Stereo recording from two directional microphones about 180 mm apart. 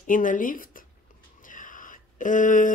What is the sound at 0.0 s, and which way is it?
Speech, 45° left (ahead or behind).